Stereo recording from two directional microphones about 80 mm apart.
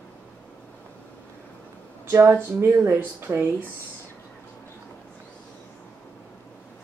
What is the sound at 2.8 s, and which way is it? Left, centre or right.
Speech, right.